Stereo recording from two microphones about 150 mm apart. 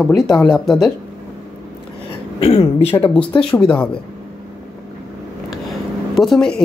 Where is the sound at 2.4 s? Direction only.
40° left (ahead or behind).